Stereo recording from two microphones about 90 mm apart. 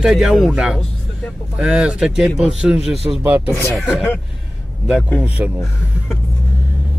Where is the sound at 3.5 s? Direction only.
15° left (ahead or behind).